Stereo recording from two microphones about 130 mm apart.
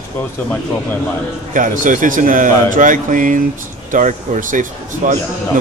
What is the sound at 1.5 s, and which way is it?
A man's voice, 85° right.